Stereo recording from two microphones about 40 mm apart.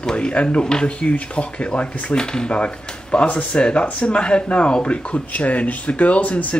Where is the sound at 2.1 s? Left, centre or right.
Centre; by 6.5 s left.